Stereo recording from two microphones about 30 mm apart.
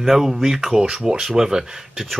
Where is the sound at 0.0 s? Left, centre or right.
Centre.